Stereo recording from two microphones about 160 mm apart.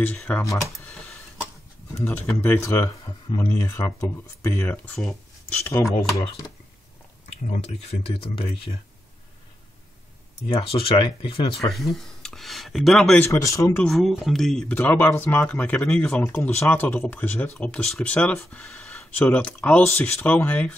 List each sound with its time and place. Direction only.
0.0 s speech: 10° left (ahead or behind)
2.0 s speech: 15° left (ahead or behind)
7.4 s speech: 45° left (ahead or behind)
10.5 s speech: 35° left (ahead or behind)
11.7 s speech: centre (ahead or behind)
13.2 s speech: 20° left (ahead or behind)
13.8 s speech: centre (ahead or behind)